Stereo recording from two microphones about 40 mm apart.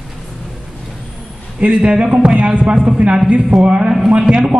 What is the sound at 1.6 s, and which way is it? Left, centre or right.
A woman's voice, right.